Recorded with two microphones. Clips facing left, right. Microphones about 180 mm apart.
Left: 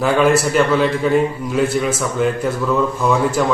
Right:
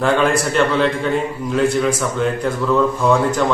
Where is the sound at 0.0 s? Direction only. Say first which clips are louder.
Left 2 dB; 5° left (ahead or behind).